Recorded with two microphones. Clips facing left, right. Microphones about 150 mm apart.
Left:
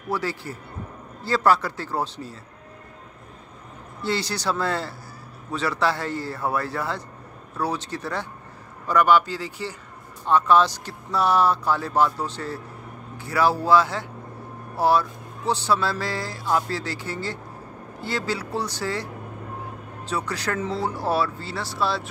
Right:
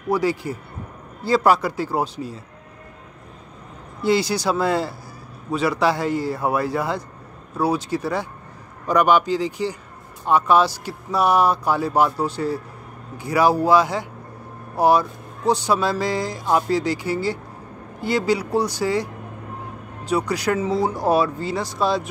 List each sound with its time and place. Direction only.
0.1 s speech: 15° right (ahead or behind)
4.0 s speech: 10° right (ahead or behind)
20.1 s speech: 10° right (ahead or behind)